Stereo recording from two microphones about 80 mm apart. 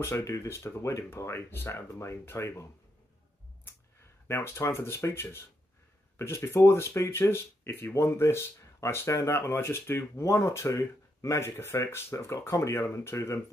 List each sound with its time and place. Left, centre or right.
0.0 s speech: left
4.3 s speech: left